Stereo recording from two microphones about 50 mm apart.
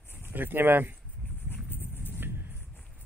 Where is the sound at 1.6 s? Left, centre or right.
Left.